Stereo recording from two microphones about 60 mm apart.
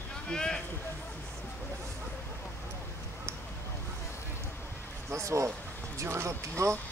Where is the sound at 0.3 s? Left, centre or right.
Centre.